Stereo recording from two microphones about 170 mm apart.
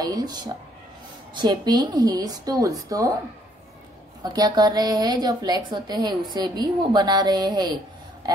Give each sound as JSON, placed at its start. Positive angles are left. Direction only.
{"t": 0.0, "sound": "a woman's voice", "side_deg": -20}
{"t": 4.2, "sound": "a woman's voice", "side_deg": -25}